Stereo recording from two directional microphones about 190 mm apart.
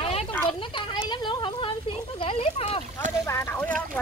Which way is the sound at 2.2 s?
30° left (ahead or behind).